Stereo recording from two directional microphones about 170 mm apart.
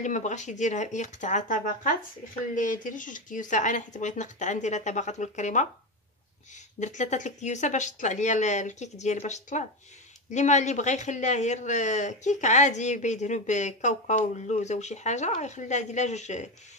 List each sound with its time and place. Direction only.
0.0 s speech: 45° left (ahead or behind)
6.8 s speech: 45° left (ahead or behind)